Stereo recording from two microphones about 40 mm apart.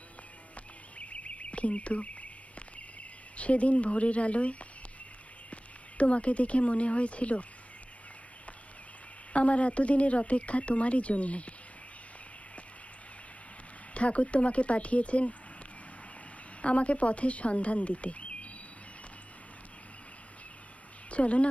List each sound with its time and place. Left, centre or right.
0.9 s a sound: left
3.0 s speech: left
9.3 s speech: left
13.9 s speech: left
16.6 s speech: left
21.1 s speech: left